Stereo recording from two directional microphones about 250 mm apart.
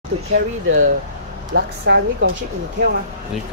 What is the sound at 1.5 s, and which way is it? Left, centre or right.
Speech, right.